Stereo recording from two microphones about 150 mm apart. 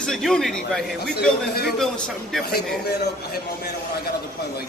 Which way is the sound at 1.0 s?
90° left.